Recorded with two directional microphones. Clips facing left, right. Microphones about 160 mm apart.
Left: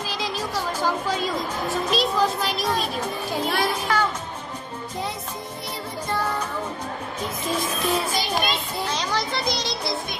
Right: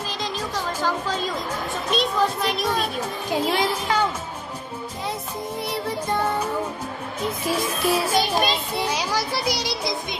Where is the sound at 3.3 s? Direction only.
15° right (ahead or behind).